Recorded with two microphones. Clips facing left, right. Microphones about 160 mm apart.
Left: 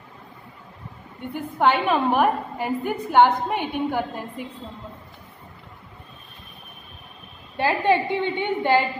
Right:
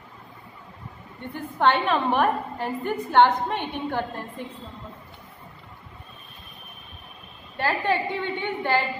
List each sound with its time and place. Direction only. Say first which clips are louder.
1.3 s a woman's voice: left 1 dB; 10° left (ahead or behind)
7.5 s a woman's voice: left 4 dB; 20° left (ahead or behind)